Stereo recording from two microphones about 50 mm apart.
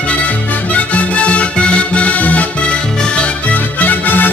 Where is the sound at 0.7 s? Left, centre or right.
Left.